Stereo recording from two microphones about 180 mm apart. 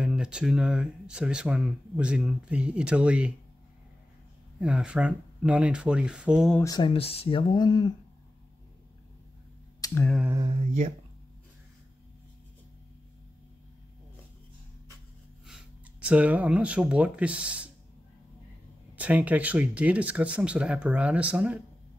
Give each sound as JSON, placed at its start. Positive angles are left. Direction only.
{"t": 0.0, "sound": "speech", "side_deg": -5}
{"t": 4.6, "sound": "speech", "side_deg": -5}
{"t": 6.6, "sound": "speech", "side_deg": 25}
{"t": 9.8, "sound": "a sound", "side_deg": 20}
{"t": 10.2, "sound": "a sound", "side_deg": -20}
{"t": 15.4, "sound": "speech", "side_deg": -5}
{"t": 18.9, "sound": "speech", "side_deg": -10}